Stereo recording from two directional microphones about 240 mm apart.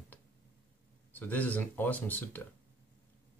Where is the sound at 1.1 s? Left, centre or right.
Centre.